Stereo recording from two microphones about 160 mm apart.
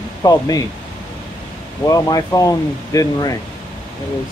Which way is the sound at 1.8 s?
20° left (ahead or behind).